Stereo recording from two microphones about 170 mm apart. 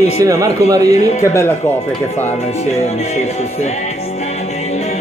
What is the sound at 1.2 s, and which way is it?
Speech, 15° left (ahead or behind).